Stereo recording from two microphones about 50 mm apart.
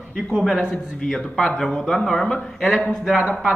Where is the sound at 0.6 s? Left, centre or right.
Centre.